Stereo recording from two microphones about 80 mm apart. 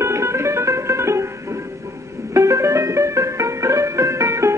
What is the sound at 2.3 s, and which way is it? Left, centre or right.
Music, right.